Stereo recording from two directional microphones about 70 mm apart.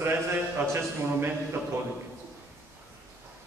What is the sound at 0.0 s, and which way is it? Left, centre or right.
A man's voice, right.